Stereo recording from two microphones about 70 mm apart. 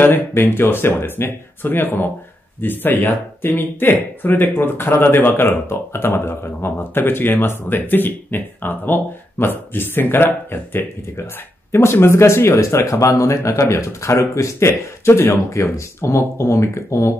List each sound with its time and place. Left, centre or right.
0.0 s speech: left